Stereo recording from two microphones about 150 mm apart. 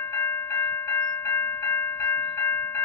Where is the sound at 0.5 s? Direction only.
20° left (ahead or behind).